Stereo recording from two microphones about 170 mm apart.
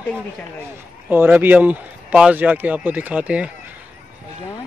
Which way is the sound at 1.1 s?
10° right (ahead or behind).